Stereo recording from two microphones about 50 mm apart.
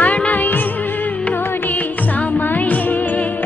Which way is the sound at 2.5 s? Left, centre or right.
Left.